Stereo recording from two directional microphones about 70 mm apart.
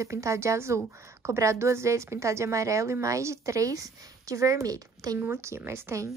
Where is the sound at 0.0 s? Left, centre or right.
Right.